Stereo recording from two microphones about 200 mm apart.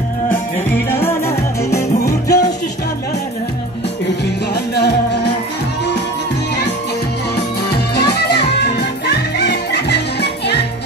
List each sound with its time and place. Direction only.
0.9 s music: 15° left (ahead or behind)
4.7 s music: 55° left (ahead or behind)
7.7 s music: 55° left (ahead or behind)